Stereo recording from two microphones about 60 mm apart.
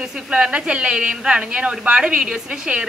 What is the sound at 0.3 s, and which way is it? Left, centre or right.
A woman's voice, centre.